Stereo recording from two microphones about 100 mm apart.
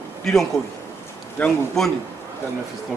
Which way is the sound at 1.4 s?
15° left (ahead or behind).